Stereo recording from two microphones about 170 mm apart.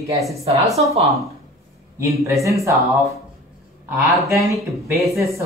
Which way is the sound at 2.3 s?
20° right (ahead or behind).